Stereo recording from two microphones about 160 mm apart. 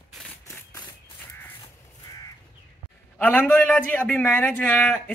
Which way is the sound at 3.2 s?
10° left (ahead or behind).